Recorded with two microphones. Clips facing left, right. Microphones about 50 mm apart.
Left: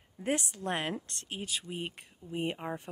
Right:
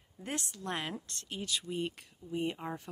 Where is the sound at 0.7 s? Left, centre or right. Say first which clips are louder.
Left 4 dB; left.